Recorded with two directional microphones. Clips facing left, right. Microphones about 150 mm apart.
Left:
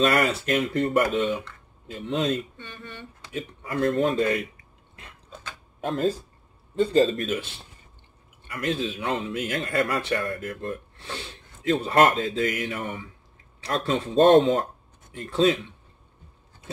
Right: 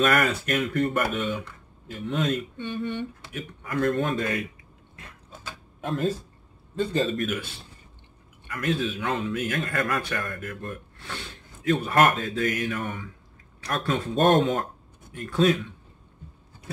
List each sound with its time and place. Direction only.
0.0 s a man's voice: 30° left (ahead or behind)
2.5 s speech: 15° right (ahead or behind)
3.3 s a man's voice: 30° left (ahead or behind)
5.8 s a man's voice: 30° left (ahead or behind)
8.5 s a man's voice: 25° left (ahead or behind)